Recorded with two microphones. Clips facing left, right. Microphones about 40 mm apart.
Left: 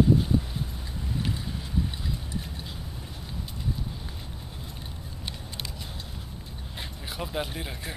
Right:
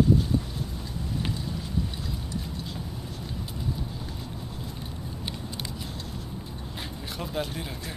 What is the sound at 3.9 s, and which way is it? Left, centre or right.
Vehicle, centre.